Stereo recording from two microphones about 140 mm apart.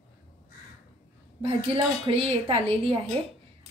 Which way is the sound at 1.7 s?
40° right (ahead or behind).